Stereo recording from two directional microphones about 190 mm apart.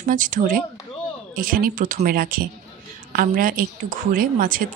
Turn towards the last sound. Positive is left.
turn(degrees=-45)  # may be behind; listen again after turning